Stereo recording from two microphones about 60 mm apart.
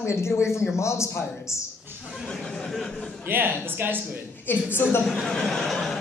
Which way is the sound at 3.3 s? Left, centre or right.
Right.